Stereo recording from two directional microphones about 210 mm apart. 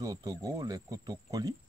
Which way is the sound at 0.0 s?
20° right (ahead or behind).